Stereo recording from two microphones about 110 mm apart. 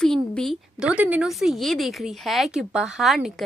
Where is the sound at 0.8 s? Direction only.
15° right (ahead or behind).